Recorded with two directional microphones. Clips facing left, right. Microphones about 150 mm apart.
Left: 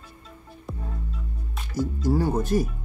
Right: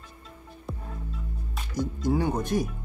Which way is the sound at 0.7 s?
Centre (ahead or behind).